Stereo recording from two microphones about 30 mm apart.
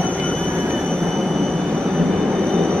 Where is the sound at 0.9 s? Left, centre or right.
Centre.